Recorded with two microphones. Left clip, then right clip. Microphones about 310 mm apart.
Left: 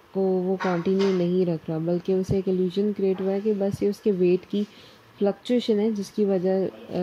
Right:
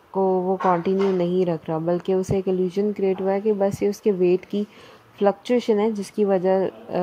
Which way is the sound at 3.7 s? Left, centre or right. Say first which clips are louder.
Right 2 dB; centre.